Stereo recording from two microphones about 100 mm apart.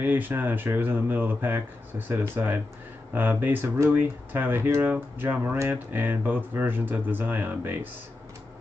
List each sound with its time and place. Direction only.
0.0 s speech: 20° right (ahead or behind)